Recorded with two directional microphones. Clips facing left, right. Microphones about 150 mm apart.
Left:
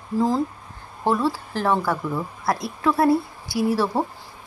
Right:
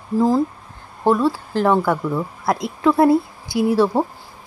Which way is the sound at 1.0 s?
15° right (ahead or behind).